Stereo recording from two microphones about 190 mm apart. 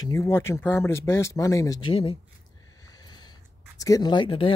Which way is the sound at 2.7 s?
20° left (ahead or behind).